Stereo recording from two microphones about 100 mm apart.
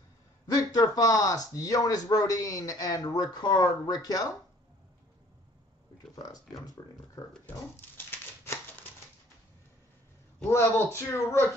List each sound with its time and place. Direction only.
0.5 s speech: 40° left (ahead or behind)
6.1 s speech: 40° left (ahead or behind)
7.7 s a sound: 25° left (ahead or behind)
10.5 s speech: 30° left (ahead or behind)